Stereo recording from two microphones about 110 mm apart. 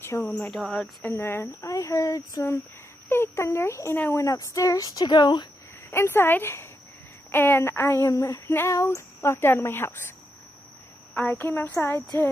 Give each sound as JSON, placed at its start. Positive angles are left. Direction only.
{"t": 0.2, "sound": "speech", "side_deg": 10}
{"t": 1.1, "sound": "speech", "side_deg": 25}
{"t": 4.2, "sound": "speech", "side_deg": 30}
{"t": 5.9, "sound": "speech", "side_deg": 20}
{"t": 11.1, "sound": "speech", "side_deg": 20}